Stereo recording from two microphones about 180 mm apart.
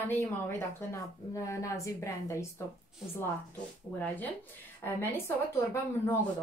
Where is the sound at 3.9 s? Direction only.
10° left (ahead or behind).